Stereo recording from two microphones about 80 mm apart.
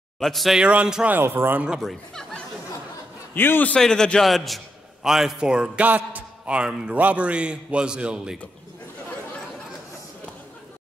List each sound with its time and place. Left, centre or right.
0.2 s speech: centre
0.6 s a man's voice: centre
1.1 s speech: right
1.8 s speech: centre
3.3 s a man's voice: left
3.7 s a man's voice: centre